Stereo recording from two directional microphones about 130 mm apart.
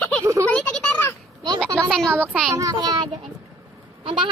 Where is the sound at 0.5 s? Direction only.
5° left (ahead or behind).